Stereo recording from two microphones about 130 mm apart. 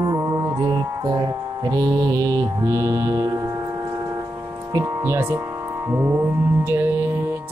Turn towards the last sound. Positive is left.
turn(degrees=-15)  # may be behind; listen again after turning